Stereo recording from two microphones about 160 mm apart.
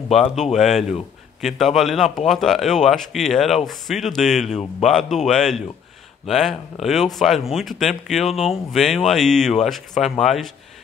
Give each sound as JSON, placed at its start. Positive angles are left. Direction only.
{"t": 0.1, "sound": "a man's voice", "side_deg": 0}
{"t": 4.5, "sound": "speech", "side_deg": 40}
{"t": 4.8, "sound": "a man's voice", "side_deg": 0}